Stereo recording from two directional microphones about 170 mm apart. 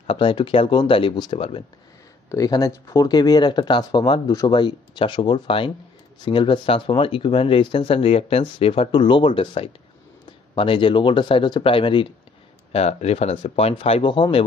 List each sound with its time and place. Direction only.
0.0 s speech: 30° left (ahead or behind)